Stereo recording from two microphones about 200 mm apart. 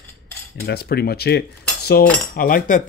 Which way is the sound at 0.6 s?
50° left (ahead or behind).